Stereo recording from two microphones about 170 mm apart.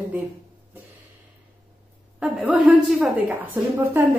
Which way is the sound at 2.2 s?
5° right (ahead or behind).